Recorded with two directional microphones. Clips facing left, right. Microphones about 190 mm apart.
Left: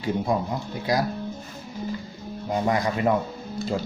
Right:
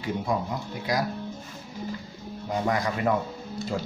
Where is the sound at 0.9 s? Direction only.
30° left (ahead or behind).